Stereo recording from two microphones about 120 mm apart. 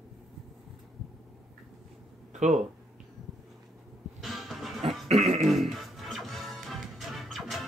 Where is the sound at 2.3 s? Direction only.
85° right.